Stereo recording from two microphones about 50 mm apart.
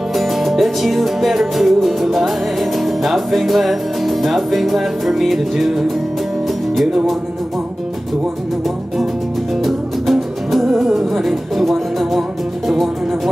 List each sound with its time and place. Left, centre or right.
0.1 s music: centre
9.6 s music: centre